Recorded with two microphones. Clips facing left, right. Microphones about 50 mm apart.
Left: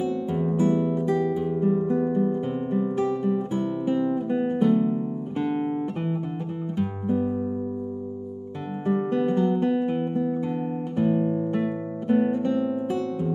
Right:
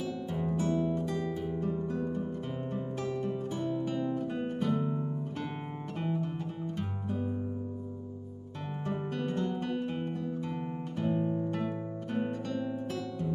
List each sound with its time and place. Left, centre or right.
0.3 s music: left
8.8 s music: centre